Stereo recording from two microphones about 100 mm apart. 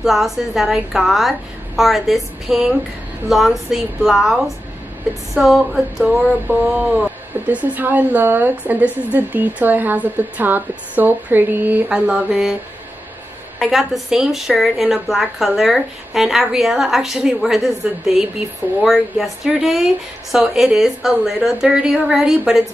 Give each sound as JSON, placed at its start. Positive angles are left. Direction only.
{"t": 0.0, "sound": "speech", "side_deg": 0}
{"t": 5.3, "sound": "a sound", "side_deg": 0}
{"t": 13.6, "sound": "speech", "side_deg": 0}